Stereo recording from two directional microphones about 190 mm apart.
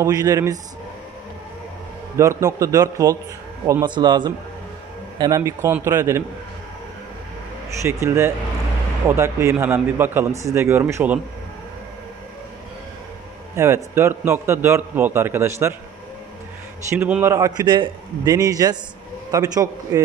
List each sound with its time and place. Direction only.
0.0 s a man's voice: 20° right (ahead or behind)
2.1 s a man's voice: 15° right (ahead or behind)
7.8 s a man's voice: 15° right (ahead or behind)
13.6 s a man's voice: 15° right (ahead or behind)
16.9 s a man's voice: 10° right (ahead or behind)